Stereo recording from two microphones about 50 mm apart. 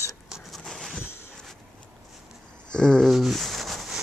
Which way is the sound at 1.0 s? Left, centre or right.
Left.